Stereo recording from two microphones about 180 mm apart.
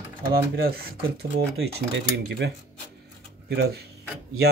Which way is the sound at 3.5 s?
65° right (ahead or behind).